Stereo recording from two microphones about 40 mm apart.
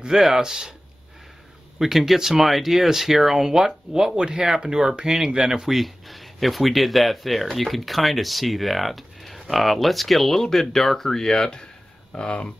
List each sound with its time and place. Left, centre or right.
0.4 s speech: centre
1.8 s speech: centre
12.3 s speech: left